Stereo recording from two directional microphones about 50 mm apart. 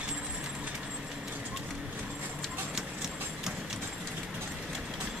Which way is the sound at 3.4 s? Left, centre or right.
Centre.